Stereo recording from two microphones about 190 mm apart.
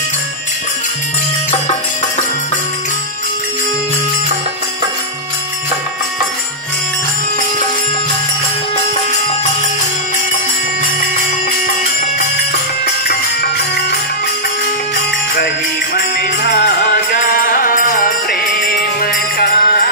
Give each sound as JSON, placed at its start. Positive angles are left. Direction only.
{"t": 1.5, "sound": "music", "side_deg": 35}
{"t": 15.3, "sound": "music", "side_deg": 55}